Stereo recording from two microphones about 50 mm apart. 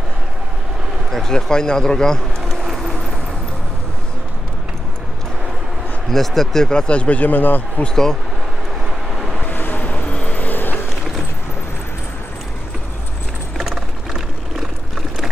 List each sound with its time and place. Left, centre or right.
1.1 s speech: centre
2.4 s vehicle: centre
6.0 s speech: centre; by 7.8 s left
7.8 s speech: centre
8.8 s vehicle: centre
9.5 s vehicle: left
10.3 s vehicle: left
13.6 s a sound: centre